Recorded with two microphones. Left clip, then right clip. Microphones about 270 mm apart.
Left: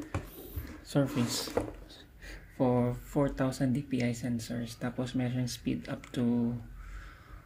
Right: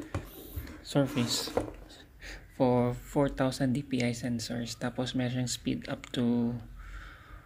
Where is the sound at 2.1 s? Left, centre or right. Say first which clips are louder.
Right 5 dB; centre.